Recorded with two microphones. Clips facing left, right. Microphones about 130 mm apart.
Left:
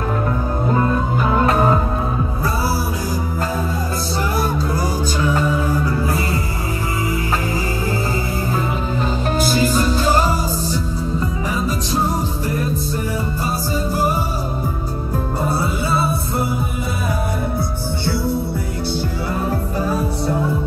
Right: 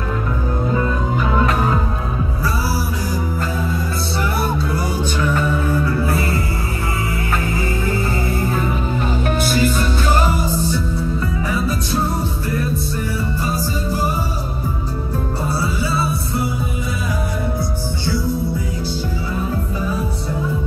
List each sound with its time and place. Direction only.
0.7 s music: 45° left (ahead or behind)
9.4 s music: 35° left (ahead or behind)
15.6 s music: 50° left (ahead or behind)